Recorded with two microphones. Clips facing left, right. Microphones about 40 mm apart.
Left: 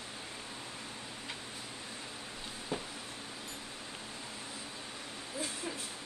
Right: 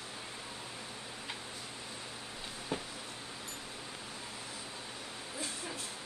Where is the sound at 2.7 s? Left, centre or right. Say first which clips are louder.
Even; centre.